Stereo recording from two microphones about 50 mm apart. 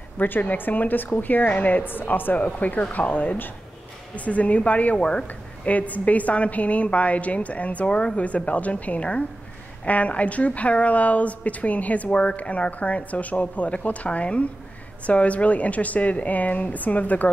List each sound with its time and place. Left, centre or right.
0.2 s speech: left
4.1 s a woman's voice: left